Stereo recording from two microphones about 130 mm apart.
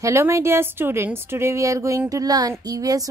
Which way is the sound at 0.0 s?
20° right (ahead or behind).